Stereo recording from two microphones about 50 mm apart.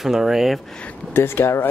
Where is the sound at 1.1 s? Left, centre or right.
Left.